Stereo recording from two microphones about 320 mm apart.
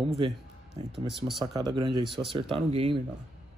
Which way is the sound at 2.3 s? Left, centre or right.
Centre.